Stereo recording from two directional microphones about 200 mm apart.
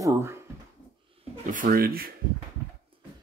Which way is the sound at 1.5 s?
45° right (ahead or behind).